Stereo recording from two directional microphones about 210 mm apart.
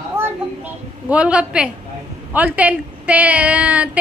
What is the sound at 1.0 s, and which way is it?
A woman's voice, 5° right (ahead or behind).